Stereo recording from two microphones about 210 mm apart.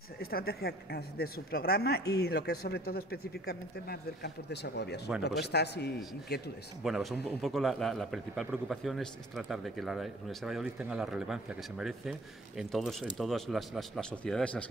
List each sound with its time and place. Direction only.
0.2 s speech: 45° left (ahead or behind)
6.8 s a man's voice: centre (ahead or behind)